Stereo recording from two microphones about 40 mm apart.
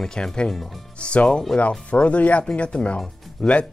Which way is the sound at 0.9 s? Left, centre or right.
Left.